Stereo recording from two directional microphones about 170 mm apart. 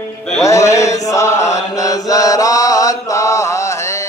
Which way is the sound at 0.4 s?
20° left (ahead or behind).